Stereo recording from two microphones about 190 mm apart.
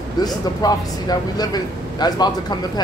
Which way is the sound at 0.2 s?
20° left (ahead or behind).